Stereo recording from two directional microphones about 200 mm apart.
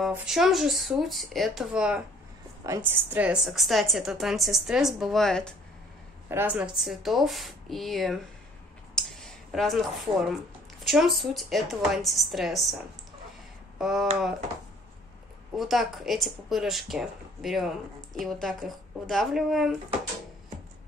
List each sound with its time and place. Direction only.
0.1 s speech: 5° right (ahead or behind)
13.7 s speech: centre (ahead or behind)
15.5 s speech: centre (ahead or behind)